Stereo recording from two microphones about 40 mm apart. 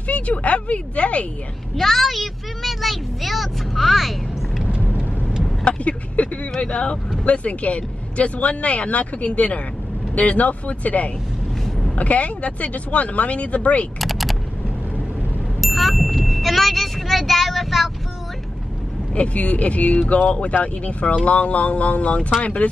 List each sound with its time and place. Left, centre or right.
0.0 s speech: left
1.8 s speech: centre
4.6 s vehicle: right
5.7 s speech: left
13.9 s mechanisms: centre
15.6 s vehicle: centre
19.1 s speech: left